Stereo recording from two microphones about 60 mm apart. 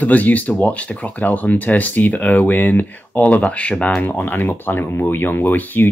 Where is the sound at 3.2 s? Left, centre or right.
Left.